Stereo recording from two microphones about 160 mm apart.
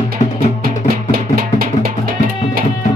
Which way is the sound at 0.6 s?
65° right (ahead or behind).